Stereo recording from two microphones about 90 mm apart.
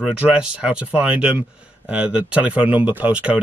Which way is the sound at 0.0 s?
10° right (ahead or behind).